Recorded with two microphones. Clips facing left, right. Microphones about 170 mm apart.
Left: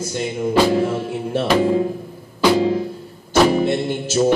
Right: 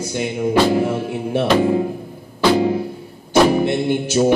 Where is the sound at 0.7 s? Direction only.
5° right (ahead or behind).